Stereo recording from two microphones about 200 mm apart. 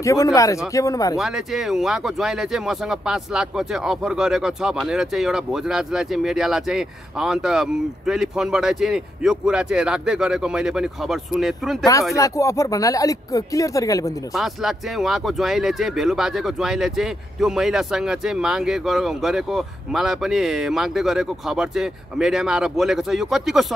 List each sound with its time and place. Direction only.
0.0 s speech: 15° left (ahead or behind)
1.1 s speech: centre (ahead or behind)
12.2 s speech: 15° left (ahead or behind)
14.3 s speech: centre (ahead or behind)